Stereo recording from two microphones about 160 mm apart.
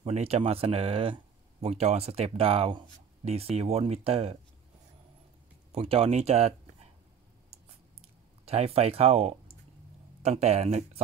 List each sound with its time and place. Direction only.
0.0 s speech: 40° right (ahead or behind)
5.7 s speech: 40° right (ahead or behind)
8.5 s speech: 40° right (ahead or behind)